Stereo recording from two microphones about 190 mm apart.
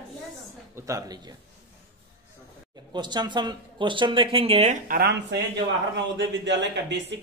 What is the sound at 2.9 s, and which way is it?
Speech, 25° right (ahead or behind).